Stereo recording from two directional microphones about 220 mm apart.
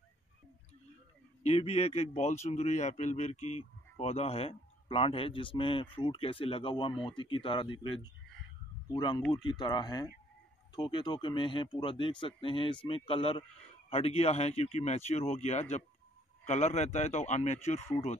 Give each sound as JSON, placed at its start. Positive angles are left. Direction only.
{"t": 1.4, "sound": "speech", "side_deg": 30}